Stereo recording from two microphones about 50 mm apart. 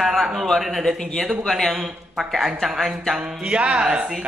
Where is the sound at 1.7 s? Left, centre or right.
Centre.